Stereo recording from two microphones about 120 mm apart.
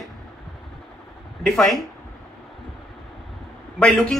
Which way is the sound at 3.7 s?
10° left (ahead or behind).